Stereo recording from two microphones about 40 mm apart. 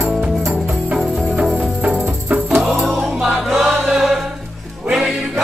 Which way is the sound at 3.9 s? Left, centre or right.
Centre.